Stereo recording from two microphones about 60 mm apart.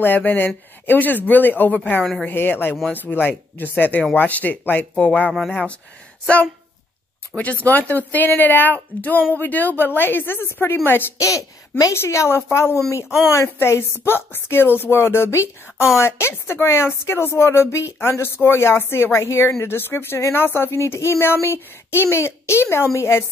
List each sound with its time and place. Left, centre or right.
0.0 s a woman's voice: left
7.3 s a woman's voice: left
11.1 s speech: left
11.9 s a woman's voice: left
20.4 s a woman's voice: left
20.7 s speech: left